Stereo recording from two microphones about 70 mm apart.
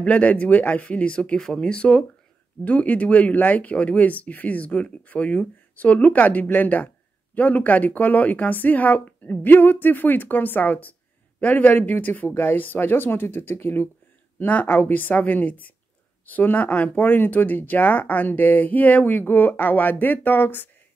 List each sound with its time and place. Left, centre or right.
0.0 s speech: centre